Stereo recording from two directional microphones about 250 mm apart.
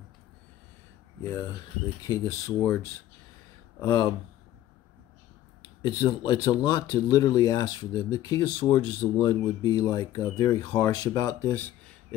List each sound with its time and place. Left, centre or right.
2.0 s speech: centre
3.8 s speech: centre
5.8 s speech: centre